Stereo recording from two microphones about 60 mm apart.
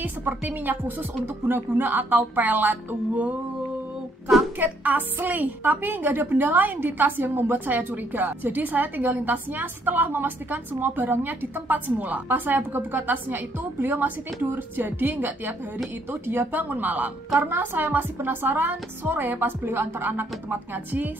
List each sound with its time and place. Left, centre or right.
0.0 s a woman's voice: right
4.6 s a woman's voice: right